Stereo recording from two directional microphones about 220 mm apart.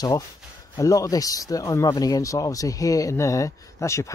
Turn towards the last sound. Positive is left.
turn(degrees=15)  # may be behind; listen again after turning